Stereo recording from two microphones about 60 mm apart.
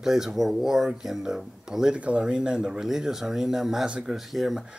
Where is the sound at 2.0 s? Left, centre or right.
Right.